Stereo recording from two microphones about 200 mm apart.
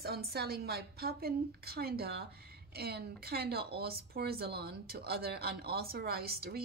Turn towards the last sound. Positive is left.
turn(degrees=-50)  # may be behind; listen again after turning